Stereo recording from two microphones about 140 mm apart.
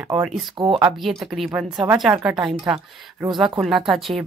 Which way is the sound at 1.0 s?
Centre (ahead or behind).